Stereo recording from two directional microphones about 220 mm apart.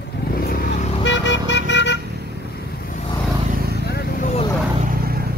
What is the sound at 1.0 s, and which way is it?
Vehicle, 55° left (ahead or behind).